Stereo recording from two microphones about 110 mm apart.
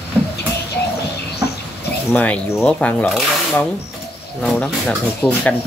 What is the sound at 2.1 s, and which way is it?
Speech, 15° left (ahead or behind).